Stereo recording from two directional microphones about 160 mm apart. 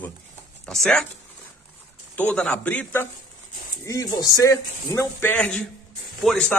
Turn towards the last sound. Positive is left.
turn(degrees=5)  # may be behind; listen again after turning